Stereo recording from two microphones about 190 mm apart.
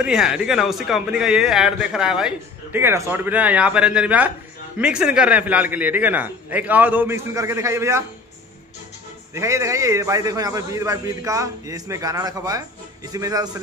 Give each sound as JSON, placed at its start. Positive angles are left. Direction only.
{"t": 0.0, "sound": "a man's voice", "side_deg": -5}
{"t": 9.3, "sound": "a man's voice", "side_deg": -15}